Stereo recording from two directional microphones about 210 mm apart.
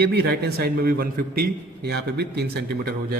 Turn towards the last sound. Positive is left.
turn(degrees=-50)  # may be behind; listen again after turning